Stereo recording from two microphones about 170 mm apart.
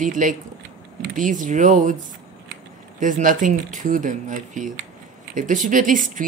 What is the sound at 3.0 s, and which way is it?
Speech, 50° right (ahead or behind).